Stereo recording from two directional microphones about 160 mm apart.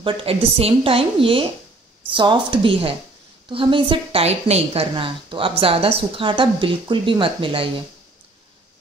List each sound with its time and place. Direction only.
0.0 s a woman's voice: 35° right (ahead or behind)